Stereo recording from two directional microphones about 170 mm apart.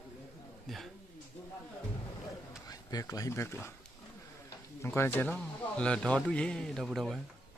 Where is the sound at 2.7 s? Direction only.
20° left (ahead or behind).